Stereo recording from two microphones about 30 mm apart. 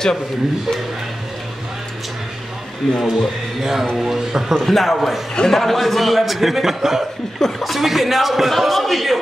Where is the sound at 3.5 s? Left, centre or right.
Centre.